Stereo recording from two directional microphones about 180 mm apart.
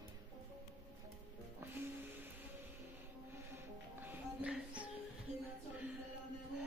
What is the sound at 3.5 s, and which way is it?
Music, 10° right (ahead or behind).